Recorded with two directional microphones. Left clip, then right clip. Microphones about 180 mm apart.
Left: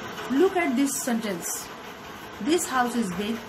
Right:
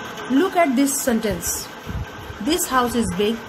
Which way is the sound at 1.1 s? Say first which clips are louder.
Right 7 dB; 30° right (ahead or behind).